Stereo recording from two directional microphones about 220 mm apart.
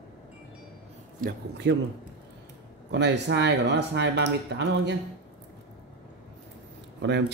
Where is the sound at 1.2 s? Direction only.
45° right (ahead or behind).